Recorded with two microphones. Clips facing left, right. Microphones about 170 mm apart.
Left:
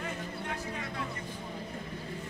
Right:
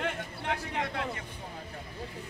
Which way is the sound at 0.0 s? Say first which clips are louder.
Right 3 dB; 75° right (ahead or behind).